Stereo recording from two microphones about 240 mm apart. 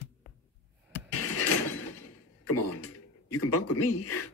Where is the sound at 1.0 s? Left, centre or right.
Left.